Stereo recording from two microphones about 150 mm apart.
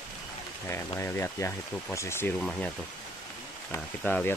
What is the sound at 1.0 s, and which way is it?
Speech, 15° left (ahead or behind).